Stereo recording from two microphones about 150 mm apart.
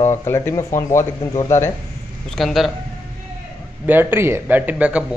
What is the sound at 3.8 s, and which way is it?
Speech, 15° right (ahead or behind).